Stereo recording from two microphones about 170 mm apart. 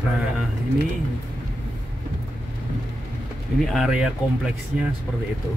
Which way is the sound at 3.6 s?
Centre (ahead or behind).